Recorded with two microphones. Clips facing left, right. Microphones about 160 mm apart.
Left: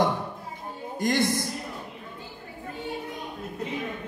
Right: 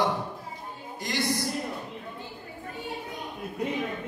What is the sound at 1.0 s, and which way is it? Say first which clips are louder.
Speech: left 7 dB; 50° left (ahead or behind).